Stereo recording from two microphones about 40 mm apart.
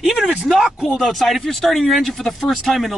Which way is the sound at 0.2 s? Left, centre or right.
Right.